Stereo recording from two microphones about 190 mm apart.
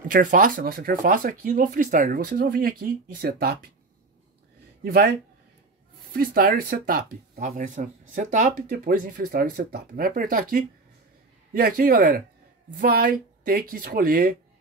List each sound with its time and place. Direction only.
0.1 s speech: 45° right (ahead or behind)
4.8 s speech: 55° right (ahead or behind)
6.1 s speech: 50° right (ahead or behind)